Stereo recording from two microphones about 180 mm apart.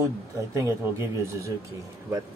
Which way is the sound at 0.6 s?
15° right (ahead or behind).